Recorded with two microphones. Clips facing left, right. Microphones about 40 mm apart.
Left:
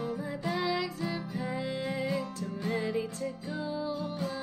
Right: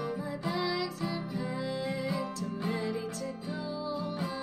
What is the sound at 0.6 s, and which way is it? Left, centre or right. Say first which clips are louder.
Music: left 1 dB; left.